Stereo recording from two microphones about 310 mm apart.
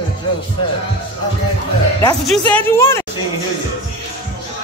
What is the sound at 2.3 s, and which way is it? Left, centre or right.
Speech, centre.